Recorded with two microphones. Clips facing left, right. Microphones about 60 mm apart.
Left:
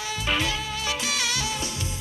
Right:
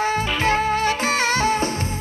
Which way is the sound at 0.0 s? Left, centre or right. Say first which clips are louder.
Right 7 dB; right.